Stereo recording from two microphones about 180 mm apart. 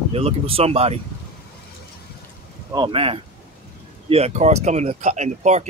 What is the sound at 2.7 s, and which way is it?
Speech, 25° right (ahead or behind).